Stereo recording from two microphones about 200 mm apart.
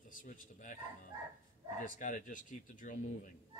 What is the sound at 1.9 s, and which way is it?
Speech, 40° left (ahead or behind).